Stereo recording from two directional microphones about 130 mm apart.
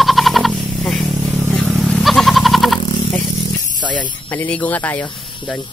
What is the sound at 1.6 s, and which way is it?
Goat, 5° right (ahead or behind).